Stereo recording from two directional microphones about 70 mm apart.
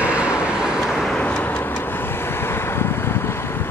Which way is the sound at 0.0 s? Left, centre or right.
Centre.